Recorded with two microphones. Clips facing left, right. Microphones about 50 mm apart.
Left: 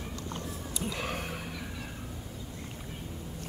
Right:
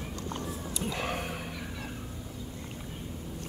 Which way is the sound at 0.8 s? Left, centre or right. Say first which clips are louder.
Right 2 dB; centre.